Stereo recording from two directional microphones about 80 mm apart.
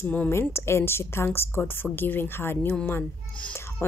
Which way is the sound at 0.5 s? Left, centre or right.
Left.